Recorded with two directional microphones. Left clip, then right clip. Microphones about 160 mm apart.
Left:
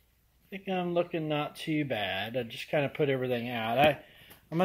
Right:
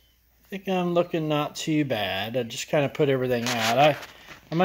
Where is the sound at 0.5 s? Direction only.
Centre (ahead or behind).